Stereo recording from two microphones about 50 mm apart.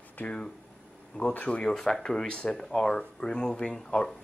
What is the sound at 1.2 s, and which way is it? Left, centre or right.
Speech, left.